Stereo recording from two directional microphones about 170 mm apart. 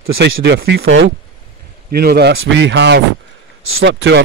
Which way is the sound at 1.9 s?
65° right (ahead or behind).